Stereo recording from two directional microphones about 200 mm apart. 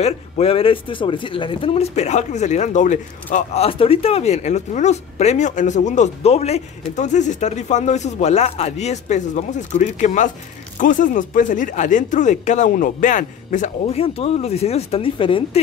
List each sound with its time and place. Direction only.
0.0 s speech: 30° left (ahead or behind)